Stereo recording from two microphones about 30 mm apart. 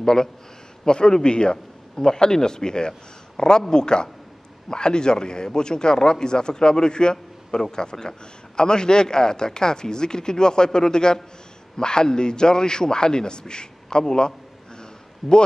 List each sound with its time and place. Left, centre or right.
0.0 s a man's voice: centre
2.0 s a man's voice: centre
14.8 s a sound: left